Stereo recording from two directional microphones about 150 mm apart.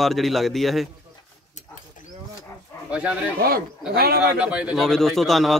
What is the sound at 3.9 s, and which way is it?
Speech, 90° right.